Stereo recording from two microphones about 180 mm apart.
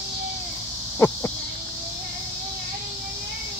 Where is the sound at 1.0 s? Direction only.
10° left (ahead or behind).